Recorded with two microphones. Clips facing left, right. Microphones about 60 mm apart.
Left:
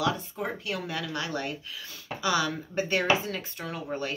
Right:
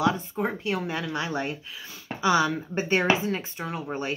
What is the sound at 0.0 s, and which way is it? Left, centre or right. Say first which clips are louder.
Speech: right 4 dB; right.